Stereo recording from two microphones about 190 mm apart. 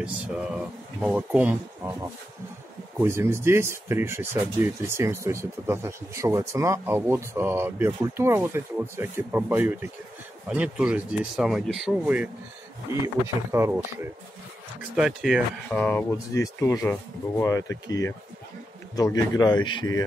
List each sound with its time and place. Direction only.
0.0 s speech: 5° right (ahead or behind)
15.0 s speech: 5° right (ahead or behind)
15.8 s a man's voice: 10° left (ahead or behind)